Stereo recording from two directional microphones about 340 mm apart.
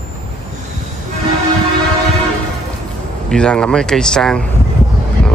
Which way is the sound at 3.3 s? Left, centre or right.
Centre.